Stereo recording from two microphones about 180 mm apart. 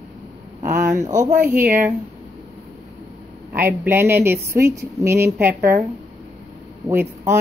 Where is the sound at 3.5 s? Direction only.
10° right (ahead or behind).